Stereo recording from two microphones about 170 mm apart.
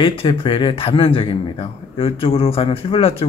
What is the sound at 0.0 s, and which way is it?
Speech, 30° left (ahead or behind).